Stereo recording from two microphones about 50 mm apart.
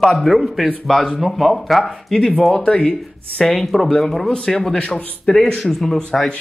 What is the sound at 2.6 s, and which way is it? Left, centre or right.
Speech, centre.